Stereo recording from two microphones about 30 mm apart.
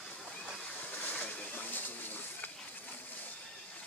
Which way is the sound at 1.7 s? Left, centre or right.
Left.